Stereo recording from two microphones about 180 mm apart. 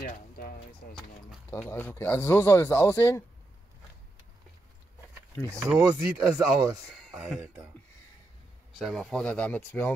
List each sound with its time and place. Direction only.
0.0 s a sound: 55° left (ahead or behind)
0.8 s speech: 55° left (ahead or behind)
1.5 s speech: 10° left (ahead or behind)
5.8 s speech: 15° right (ahead or behind)
7.0 s speech: 5° right (ahead or behind)
8.7 s speech: centre (ahead or behind)